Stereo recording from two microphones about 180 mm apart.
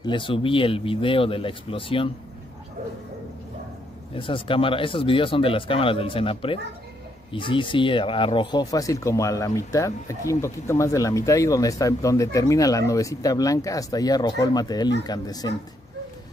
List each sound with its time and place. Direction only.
0.0 s speech: 25° left (ahead or behind)
4.1 s speech: 30° left (ahead or behind)